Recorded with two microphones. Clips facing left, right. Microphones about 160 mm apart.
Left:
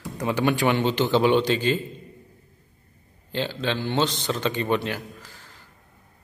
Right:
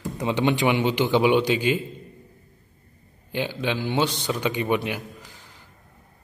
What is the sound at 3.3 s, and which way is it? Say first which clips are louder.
A man's voice: even; 15° right (ahead or behind).